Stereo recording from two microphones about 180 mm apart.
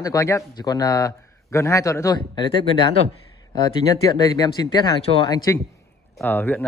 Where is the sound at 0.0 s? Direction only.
15° left (ahead or behind).